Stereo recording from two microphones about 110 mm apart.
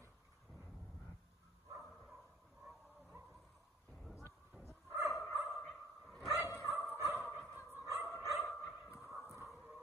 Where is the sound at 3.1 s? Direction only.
20° right (ahead or behind).